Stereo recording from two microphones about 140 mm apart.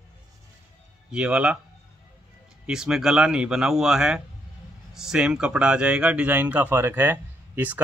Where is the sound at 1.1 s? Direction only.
5° right (ahead or behind).